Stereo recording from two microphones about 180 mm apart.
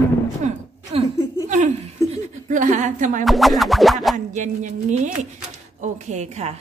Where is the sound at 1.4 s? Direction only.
40° right (ahead or behind).